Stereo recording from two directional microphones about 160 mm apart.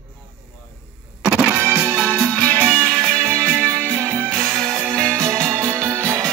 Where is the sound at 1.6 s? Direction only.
20° right (ahead or behind).